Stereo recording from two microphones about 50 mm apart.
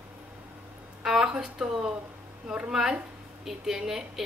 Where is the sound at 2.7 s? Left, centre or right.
Centre.